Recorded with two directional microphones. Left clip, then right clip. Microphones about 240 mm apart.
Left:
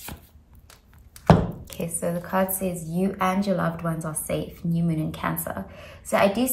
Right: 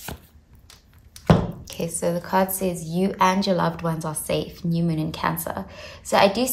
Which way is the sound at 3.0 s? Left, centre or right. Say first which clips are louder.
Right 5 dB; centre.